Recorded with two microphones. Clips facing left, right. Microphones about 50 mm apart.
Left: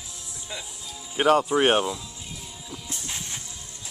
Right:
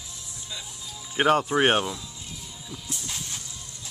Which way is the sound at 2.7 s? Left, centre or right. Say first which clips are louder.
Even; left.